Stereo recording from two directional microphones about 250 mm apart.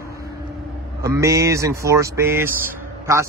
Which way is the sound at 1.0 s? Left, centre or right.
Centre.